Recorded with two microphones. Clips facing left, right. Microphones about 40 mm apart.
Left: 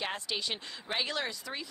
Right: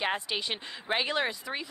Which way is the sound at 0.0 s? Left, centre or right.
Right.